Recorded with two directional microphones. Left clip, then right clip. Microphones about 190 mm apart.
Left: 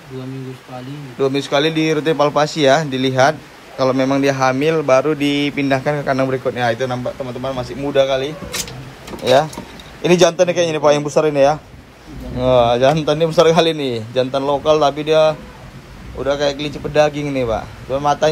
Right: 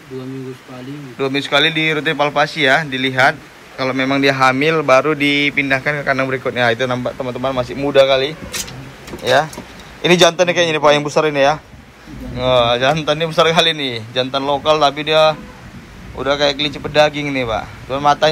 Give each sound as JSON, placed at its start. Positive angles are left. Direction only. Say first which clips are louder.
{"t": 1.1, "sound": "a man's voice", "louder": "right 1 dB", "side_deg": 15}
{"t": 10.0, "sound": "a man's voice", "louder": "right 1 dB", "side_deg": 15}